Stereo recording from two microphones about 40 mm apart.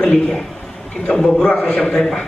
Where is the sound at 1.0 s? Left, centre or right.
Left.